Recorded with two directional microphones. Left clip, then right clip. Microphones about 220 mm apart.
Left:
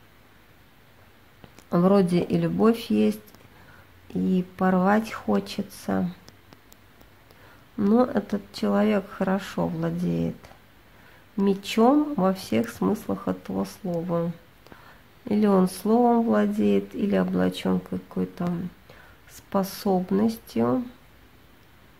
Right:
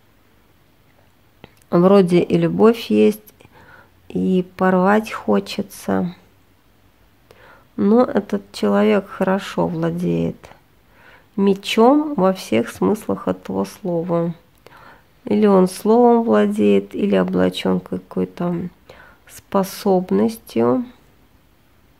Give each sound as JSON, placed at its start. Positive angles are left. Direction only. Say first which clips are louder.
{"t": 1.4, "sound": "speech", "louder": "right 8 dB", "side_deg": -20}
{"t": 7.7, "sound": "speech", "louder": "right 7 dB", "side_deg": -20}